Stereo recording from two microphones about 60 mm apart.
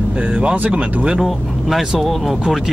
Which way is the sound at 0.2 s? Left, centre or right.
Right.